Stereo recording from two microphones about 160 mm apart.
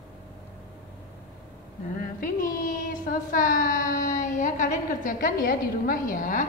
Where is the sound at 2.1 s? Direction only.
60° left (ahead or behind).